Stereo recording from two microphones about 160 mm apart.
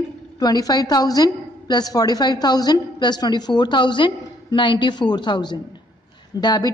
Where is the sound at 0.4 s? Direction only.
25° left (ahead or behind).